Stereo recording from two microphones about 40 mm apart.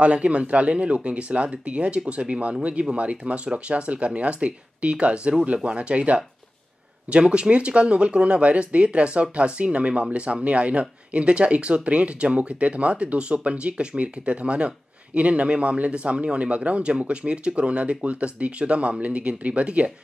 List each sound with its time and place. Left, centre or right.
0.0 s speech: right